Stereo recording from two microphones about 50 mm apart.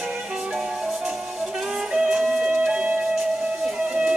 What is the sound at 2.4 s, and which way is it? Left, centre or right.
Music, centre.